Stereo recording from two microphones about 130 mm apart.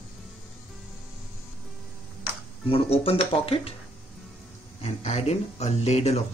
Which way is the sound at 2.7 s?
45° left (ahead or behind).